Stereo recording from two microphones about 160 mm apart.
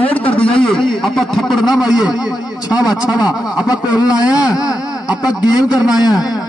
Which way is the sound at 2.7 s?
25° left (ahead or behind).